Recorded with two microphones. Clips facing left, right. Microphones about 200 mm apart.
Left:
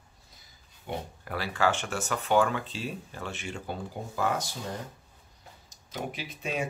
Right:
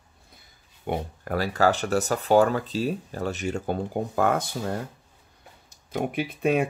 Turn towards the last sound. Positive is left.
turn(degrees=-55)  # may be behind; listen again after turning